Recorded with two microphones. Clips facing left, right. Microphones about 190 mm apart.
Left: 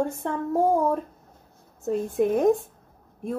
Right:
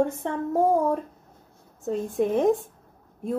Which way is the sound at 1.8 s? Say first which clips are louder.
Left 1 dB; 5° left (ahead or behind).